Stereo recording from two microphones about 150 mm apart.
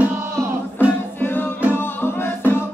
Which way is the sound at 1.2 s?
15° left (ahead or behind).